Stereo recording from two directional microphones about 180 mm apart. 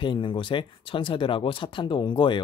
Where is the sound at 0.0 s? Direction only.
25° left (ahead or behind).